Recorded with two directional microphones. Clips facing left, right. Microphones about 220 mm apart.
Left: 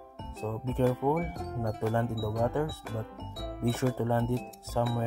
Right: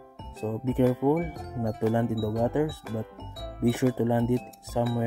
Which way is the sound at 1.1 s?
Centre (ahead or behind).